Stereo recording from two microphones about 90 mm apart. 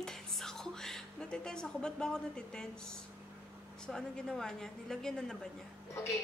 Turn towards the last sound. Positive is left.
turn(degrees=30)  # may be behind; listen again after turning